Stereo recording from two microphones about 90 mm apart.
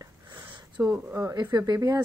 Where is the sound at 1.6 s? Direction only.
40° right (ahead or behind).